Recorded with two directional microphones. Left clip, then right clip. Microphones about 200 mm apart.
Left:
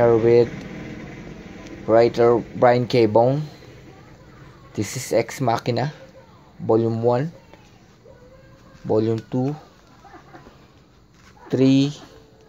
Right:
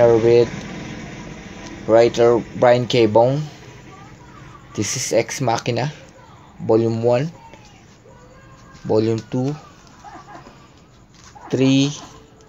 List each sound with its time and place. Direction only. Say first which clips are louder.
0.0 s speech: right 2 dB; 15° left (ahead or behind)
1.9 s speech: right 2 dB; 15° left (ahead or behind)
4.7 s speech: right 3 dB; 10° left (ahead or behind)
8.8 s speech: right 2 dB; 5° left (ahead or behind)
11.4 s speech: right 1 dB; 15° left (ahead or behind)